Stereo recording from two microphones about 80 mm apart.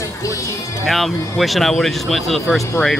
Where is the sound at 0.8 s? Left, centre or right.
Centre.